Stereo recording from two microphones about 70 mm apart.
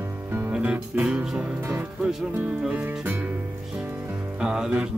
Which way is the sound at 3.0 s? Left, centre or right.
Right.